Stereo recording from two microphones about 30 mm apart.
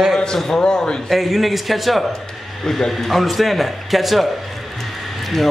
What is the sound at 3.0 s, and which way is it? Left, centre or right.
Speech, centre.